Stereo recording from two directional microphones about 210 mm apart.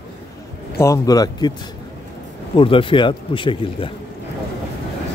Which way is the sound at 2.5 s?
25° left (ahead or behind).